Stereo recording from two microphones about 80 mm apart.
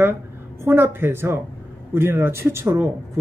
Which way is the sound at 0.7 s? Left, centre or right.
Right.